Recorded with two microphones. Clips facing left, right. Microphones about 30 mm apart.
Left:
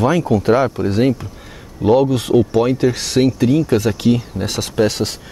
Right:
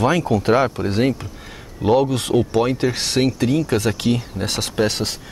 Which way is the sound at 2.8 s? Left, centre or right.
Centre.